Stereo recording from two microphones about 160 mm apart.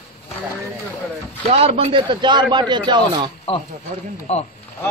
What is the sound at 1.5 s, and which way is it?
A man's voice, 40° right (ahead or behind).